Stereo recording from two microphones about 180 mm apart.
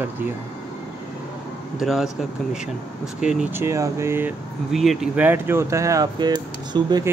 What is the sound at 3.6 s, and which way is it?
Speech, 15° right (ahead or behind).